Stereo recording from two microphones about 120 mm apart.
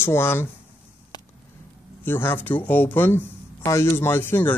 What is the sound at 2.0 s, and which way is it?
Speech, 15° left (ahead or behind).